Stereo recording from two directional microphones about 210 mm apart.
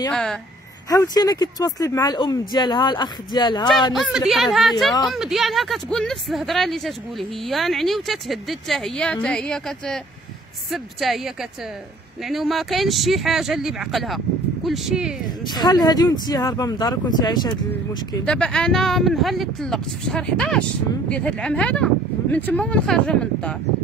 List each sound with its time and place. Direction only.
0.1 s speech: centre (ahead or behind)
0.8 s speech: 15° left (ahead or behind)
3.9 s speech: centre (ahead or behind)
15.4 s speech: 20° left (ahead or behind)
18.2 s speech: 5° left (ahead or behind)